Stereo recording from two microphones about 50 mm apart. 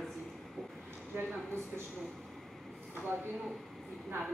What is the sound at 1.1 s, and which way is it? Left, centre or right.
Speech, right.